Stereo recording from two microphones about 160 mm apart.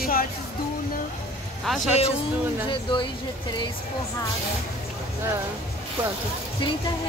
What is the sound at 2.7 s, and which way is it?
Speech, 30° left (ahead or behind).